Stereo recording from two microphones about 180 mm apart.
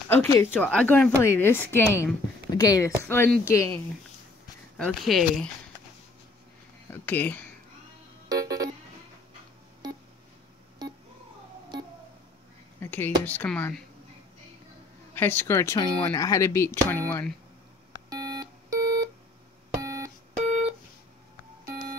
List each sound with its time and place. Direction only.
0.1 s speech: 15° left (ahead or behind)
4.7 s speech: centre (ahead or behind)
6.9 s speech: 10° left (ahead or behind)
8.3 s vehicle: 20° right (ahead or behind)
9.8 s a sound: 20° right (ahead or behind)
12.8 s a sound: 10° left (ahead or behind)
13.2 s speech: 10° left (ahead or behind)
15.1 s speech: 10° left (ahead or behind)
18.1 s alarm clock: 20° right (ahead or behind)
19.8 s beep: 15° right (ahead or behind)